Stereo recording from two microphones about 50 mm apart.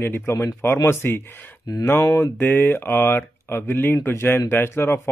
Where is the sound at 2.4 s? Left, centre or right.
Left.